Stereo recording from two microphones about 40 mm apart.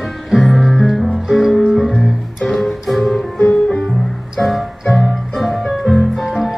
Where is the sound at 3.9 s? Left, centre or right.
Centre.